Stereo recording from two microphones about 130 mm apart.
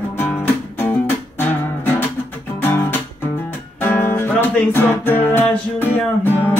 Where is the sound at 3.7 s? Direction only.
15° left (ahead or behind).